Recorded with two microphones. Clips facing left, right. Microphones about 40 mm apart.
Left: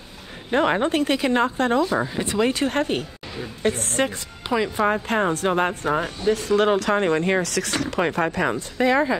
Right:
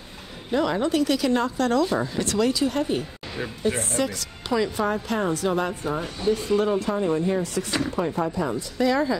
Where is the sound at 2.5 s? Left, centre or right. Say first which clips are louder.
Left 1 dB; left.